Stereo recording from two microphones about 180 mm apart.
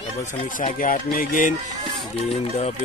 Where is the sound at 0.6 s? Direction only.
45° left (ahead or behind).